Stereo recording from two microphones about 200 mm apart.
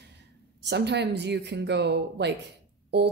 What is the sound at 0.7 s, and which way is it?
A woman's voice, 60° right (ahead or behind).